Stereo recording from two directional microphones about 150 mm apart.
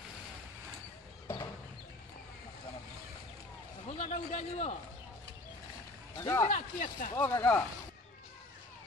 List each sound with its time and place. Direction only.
1.2 s chicken: 25° left (ahead or behind)
4.0 s a man's voice: 50° left (ahead or behind)
6.1 s speech: 20° left (ahead or behind)
6.5 s speech: 60° left (ahead or behind)
7.2 s speech: 15° left (ahead or behind)